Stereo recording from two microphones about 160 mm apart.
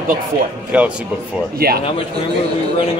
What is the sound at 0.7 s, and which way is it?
Speech, 10° right (ahead or behind).